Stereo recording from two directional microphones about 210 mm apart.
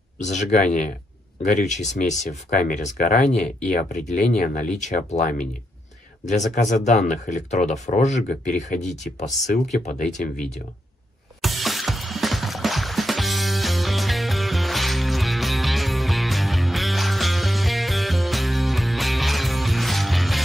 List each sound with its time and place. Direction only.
0.2 s speech: 35° left (ahead or behind)
3.4 s speech: 5° left (ahead or behind)
3.7 s speech: 35° left (ahead or behind)
6.5 s speech: 35° left (ahead or behind)
11.4 s music: centre (ahead or behind)